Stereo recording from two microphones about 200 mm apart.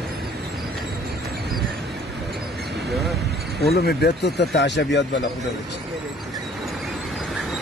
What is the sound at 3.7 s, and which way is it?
Speech, 55° left (ahead or behind).